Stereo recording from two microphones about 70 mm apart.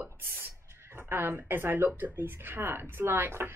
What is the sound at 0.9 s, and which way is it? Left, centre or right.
Speech, right.